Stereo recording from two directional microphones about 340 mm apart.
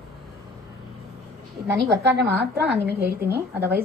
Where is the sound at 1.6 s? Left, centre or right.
Right.